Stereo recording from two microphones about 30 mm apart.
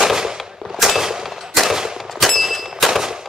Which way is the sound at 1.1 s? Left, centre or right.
Centre.